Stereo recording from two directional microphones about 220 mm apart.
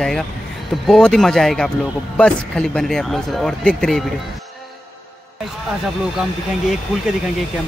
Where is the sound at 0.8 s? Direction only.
5° left (ahead or behind).